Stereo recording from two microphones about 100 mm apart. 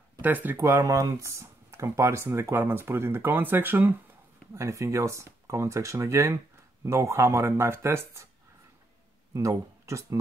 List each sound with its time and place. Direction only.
0.2 s speech: 15° right (ahead or behind)
0.6 s speech: 30° right (ahead or behind)
4.6 s speech: 30° right (ahead or behind)
9.3 s speech: 30° right (ahead or behind)